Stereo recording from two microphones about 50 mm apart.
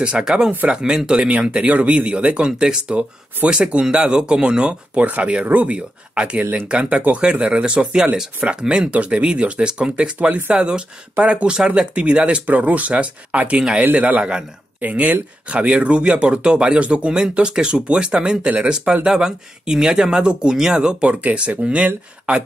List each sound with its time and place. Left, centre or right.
0.2 s speech: centre
12.4 s speech: right
14.8 s speech: right
15.5 s speech: right
21.1 s speech: right